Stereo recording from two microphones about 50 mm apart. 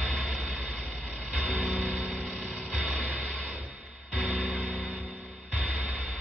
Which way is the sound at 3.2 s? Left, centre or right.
Right.